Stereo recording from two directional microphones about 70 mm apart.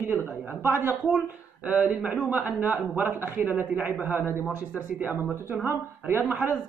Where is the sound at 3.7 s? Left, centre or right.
Centre.